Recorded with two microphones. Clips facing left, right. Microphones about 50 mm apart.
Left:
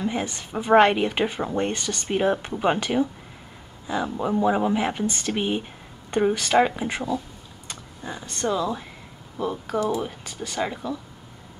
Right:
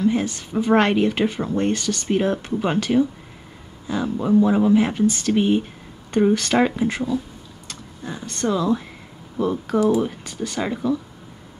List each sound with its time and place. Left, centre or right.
0.0 s speech: centre